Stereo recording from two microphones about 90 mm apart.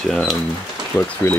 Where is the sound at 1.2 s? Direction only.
30° left (ahead or behind).